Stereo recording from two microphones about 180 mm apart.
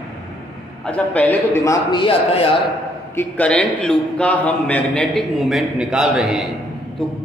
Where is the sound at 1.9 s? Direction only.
30° left (ahead or behind).